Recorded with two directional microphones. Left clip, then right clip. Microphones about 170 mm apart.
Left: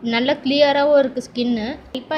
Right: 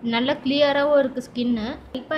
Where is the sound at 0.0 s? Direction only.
10° left (ahead or behind).